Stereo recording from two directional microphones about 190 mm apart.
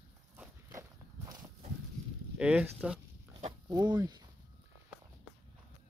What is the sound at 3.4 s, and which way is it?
Oink, 25° right (ahead or behind).